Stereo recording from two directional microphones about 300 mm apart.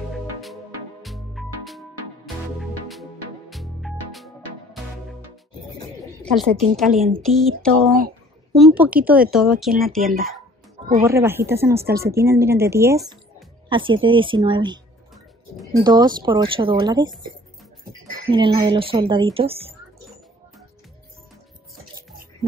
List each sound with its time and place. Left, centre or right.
0.1 s music: centre
3.4 s music: centre
6.3 s speech: centre
15.8 s speech: centre
18.3 s speech: centre